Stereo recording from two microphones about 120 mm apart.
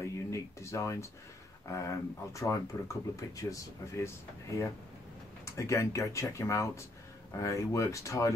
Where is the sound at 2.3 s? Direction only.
25° left (ahead or behind).